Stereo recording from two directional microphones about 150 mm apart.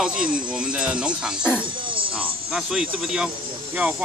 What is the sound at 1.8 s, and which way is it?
Music, 35° right (ahead or behind).